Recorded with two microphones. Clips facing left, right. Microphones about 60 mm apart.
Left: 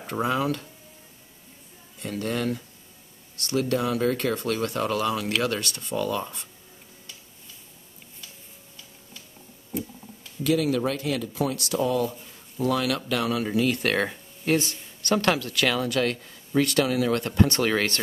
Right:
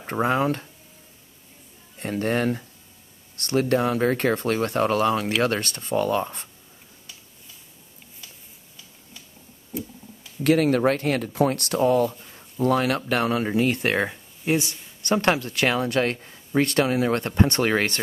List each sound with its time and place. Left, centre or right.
0.0 s speech: right
2.0 s speech: right
10.4 s speech: right
14.4 s speech: centre
15.0 s speech: right